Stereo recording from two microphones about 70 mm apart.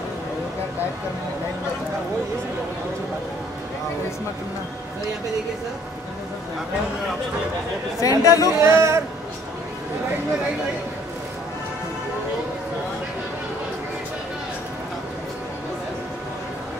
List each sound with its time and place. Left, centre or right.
8.0 s speech: left
8.5 s a man's voice: right